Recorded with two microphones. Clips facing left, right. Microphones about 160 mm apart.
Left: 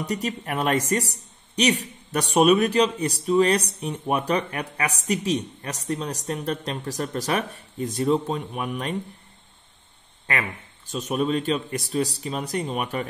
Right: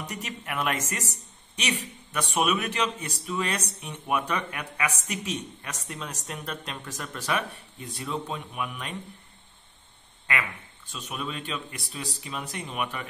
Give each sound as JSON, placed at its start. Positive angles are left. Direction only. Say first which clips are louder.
{"t": 0.0, "sound": "speech", "louder": "left 9 dB", "side_deg": 35}
{"t": 10.9, "sound": "speech", "louder": "left 11 dB", "side_deg": 40}